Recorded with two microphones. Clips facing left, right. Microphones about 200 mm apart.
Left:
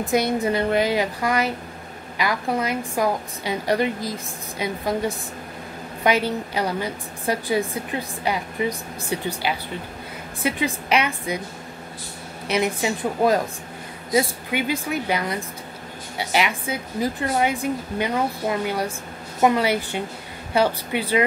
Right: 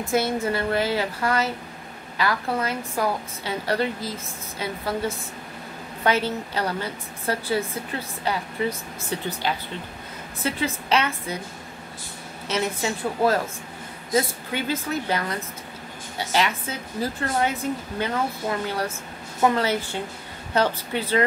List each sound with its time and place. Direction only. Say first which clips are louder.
0.0 s a woman's voice: left 2 dB; 15° left (ahead or behind)
12.4 s a woman's voice: left 3 dB; 15° left (ahead or behind)